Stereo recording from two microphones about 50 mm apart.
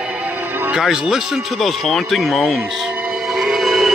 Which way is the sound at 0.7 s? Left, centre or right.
Centre.